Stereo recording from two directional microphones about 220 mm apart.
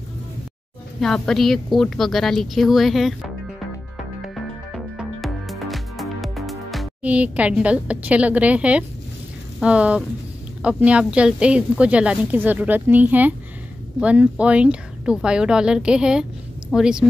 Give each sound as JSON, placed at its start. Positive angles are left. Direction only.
{"t": 1.0, "sound": "a woman's voice", "side_deg": 0}
{"t": 4.7, "sound": "music", "side_deg": 0}
{"t": 9.6, "sound": "a woman's voice", "side_deg": -5}